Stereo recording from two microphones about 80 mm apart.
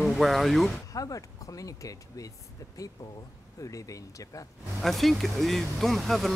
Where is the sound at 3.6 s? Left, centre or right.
Left.